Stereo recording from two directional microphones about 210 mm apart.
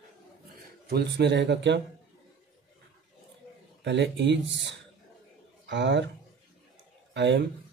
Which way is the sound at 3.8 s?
55° right (ahead or behind).